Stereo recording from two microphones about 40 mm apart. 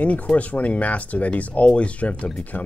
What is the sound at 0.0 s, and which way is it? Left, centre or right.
Speech, left.